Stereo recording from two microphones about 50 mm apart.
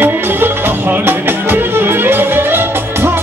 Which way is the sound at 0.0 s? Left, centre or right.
Right.